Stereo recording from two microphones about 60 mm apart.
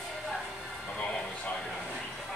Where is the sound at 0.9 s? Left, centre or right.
Left.